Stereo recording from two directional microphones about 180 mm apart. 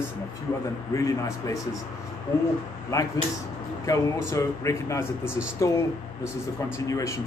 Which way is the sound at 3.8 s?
15° left (ahead or behind).